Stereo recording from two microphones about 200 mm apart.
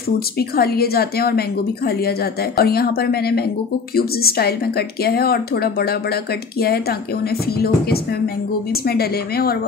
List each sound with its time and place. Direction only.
0.4 s a woman's voice: 50° left (ahead or behind)
2.6 s a woman's voice: 50° left (ahead or behind)
8.8 s a woman's voice: 50° left (ahead or behind)